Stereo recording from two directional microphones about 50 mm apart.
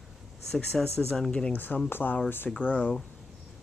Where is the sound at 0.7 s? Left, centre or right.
Centre.